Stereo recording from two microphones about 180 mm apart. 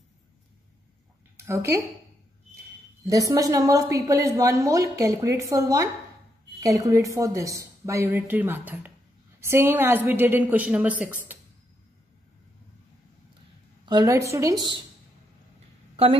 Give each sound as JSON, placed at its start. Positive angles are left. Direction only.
{"t": 1.3, "sound": "speech", "side_deg": -15}
{"t": 3.1, "sound": "a woman's voice", "side_deg": -20}
{"t": 13.8, "sound": "a woman's voice", "side_deg": -20}